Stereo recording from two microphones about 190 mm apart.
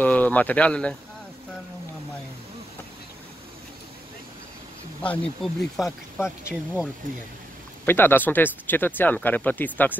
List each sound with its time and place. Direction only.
0.0 s speech: 10° left (ahead or behind)
5.0 s speech: 5° left (ahead or behind)
7.8 s speech: 10° left (ahead or behind)